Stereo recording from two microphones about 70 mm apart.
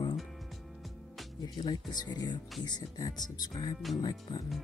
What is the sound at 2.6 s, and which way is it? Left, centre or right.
Speech, left.